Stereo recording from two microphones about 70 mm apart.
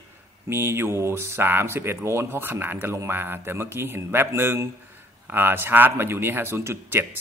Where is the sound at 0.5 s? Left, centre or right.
Right.